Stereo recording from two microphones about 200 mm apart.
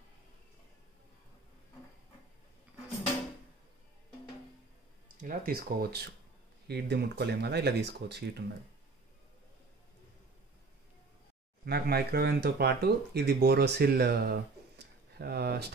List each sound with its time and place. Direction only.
5.1 s speech: 45° right (ahead or behind)
11.6 s speech: 50° right (ahead or behind)